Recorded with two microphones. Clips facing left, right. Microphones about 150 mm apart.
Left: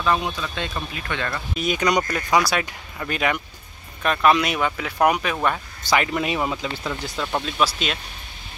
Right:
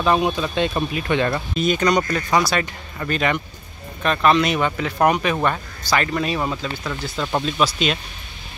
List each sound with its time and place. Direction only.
0.0 s speech: 25° right (ahead or behind)
1.5 s speech: 10° left (ahead or behind)
5.9 s speech: 15° left (ahead or behind)